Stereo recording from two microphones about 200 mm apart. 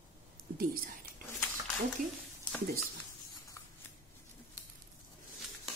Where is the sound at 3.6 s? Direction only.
15° left (ahead or behind).